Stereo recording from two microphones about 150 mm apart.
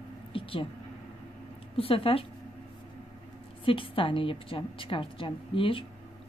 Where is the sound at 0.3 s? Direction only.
35° left (ahead or behind).